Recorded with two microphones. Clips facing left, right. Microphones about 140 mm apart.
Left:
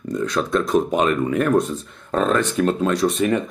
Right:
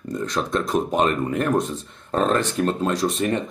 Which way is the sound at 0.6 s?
Centre (ahead or behind).